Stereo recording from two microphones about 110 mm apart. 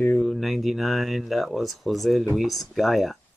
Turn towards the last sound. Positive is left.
turn(degrees=0)  # may be behind; listen again after turning